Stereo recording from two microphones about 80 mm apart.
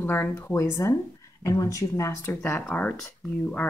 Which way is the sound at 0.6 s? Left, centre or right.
Left.